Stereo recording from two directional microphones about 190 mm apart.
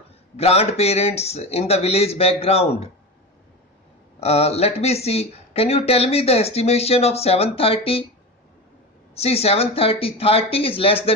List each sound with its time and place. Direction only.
0.4 s speech: 35° left (ahead or behind)
4.2 s speech: 35° left (ahead or behind)
9.1 s speech: 35° left (ahead or behind)